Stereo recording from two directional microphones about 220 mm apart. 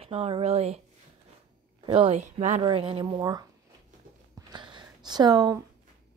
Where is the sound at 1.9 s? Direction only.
25° right (ahead or behind).